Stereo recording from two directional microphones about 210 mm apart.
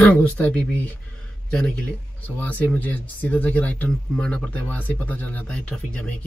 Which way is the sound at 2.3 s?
5° left (ahead or behind).